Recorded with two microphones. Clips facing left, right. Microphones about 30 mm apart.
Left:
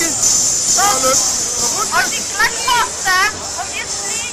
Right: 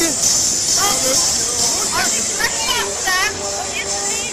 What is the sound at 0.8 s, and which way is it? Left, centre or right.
Speech, centre.